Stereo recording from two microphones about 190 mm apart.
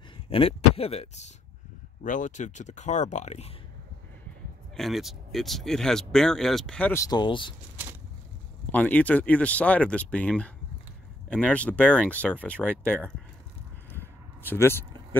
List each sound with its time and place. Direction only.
0.3 s speech: 30° left (ahead or behind)
4.7 s speech: centre (ahead or behind)
7.1 s speech: 25° left (ahead or behind)
8.7 s speech: 10° left (ahead or behind)
14.5 s speech: 10° left (ahead or behind)